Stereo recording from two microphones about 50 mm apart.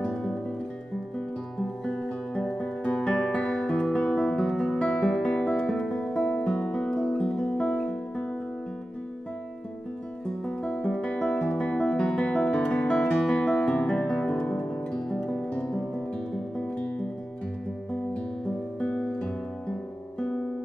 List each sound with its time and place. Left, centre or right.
0.1 s music: centre
1.6 s music: centre
10.4 s music: centre
13.5 s guitar: centre
15.0 s music: centre
16.6 s music: left
18.1 s music: left